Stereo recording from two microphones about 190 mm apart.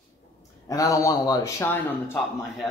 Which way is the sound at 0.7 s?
20° left (ahead or behind).